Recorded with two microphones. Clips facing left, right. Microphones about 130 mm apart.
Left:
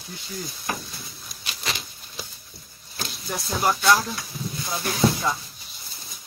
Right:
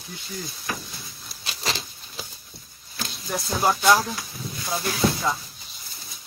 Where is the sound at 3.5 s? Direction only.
5° right (ahead or behind).